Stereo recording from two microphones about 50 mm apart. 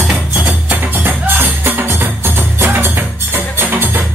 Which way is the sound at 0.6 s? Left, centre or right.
Right.